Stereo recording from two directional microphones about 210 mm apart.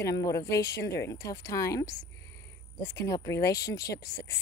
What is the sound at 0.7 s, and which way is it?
Speech, 50° left (ahead or behind).